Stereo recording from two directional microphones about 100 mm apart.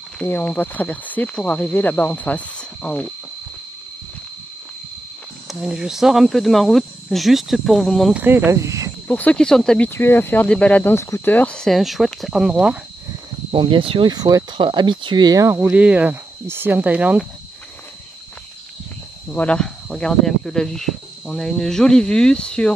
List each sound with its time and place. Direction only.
0.2 s speech: 15° left (ahead or behind)
5.5 s speech: 5° right (ahead or behind)
8.1 s speech: 15° right (ahead or behind); by 8.9 s 30° right (ahead or behind)
9.0 s speech: 15° left (ahead or behind)
9.8 s speech: 20° left (ahead or behind); by 12.7 s 5° right (ahead or behind)
13.5 s speech: 60° right (ahead or behind)
14.1 s speech: 40° right (ahead or behind)
14.6 s speech: 50° right (ahead or behind)
15.4 s speech: 30° right (ahead or behind)
15.7 s speech: 15° right (ahead or behind)
19.3 s speech: 10° left (ahead or behind)